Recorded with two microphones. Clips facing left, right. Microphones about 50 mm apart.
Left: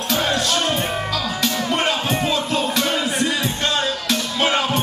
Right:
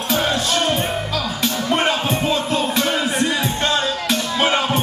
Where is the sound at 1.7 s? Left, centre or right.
Centre.